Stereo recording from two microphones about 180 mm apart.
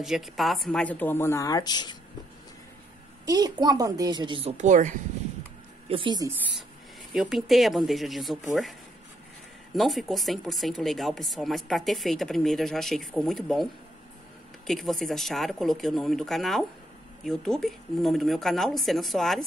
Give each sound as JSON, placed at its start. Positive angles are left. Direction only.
{"t": 0.0, "sound": "speech", "side_deg": 0}
{"t": 3.3, "sound": "speech", "side_deg": -25}
{"t": 5.9, "sound": "speech", "side_deg": -30}
{"t": 7.2, "sound": "speech", "side_deg": 0}
{"t": 9.8, "sound": "speech", "side_deg": 0}
{"t": 14.7, "sound": "speech", "side_deg": 0}